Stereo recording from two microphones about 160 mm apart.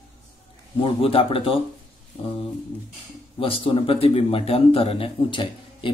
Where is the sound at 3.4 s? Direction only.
35° left (ahead or behind).